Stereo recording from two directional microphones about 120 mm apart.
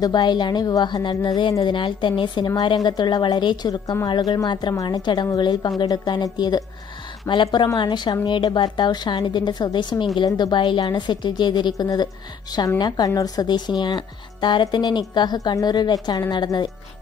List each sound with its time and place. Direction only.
0.0 s speech: 35° left (ahead or behind)